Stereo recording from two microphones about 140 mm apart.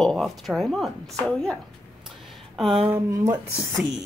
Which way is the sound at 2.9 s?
20° right (ahead or behind).